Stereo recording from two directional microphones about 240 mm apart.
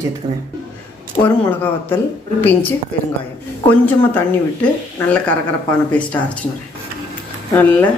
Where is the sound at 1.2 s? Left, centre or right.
Centre.